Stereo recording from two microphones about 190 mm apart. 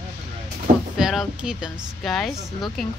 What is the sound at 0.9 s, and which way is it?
Speech, centre (ahead or behind).